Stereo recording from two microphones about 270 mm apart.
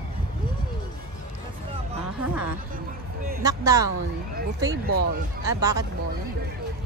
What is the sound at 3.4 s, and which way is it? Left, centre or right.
Speech, centre.